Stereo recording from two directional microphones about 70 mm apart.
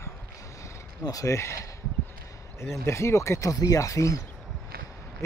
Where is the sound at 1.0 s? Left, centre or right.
Left.